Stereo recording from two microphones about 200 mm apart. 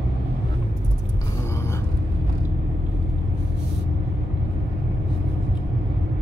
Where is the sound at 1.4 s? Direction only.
15° left (ahead or behind).